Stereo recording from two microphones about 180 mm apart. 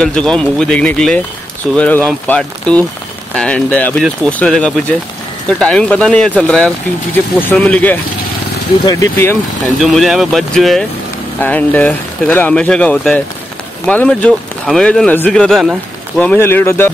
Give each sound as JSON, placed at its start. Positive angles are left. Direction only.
{"t": 0.0, "sound": "speech", "side_deg": 5}
{"t": 9.8, "sound": "speech", "side_deg": 0}